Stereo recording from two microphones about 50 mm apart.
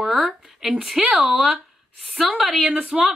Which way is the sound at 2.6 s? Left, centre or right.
Right.